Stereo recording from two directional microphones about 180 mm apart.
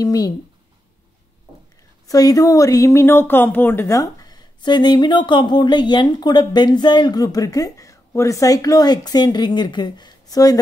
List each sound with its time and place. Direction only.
0.0 s speech: 20° left (ahead or behind)
2.0 s speech: 20° left (ahead or behind)